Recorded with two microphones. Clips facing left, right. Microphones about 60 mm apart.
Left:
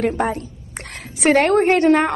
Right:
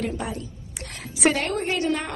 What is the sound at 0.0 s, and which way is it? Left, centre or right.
A woman's voice, left.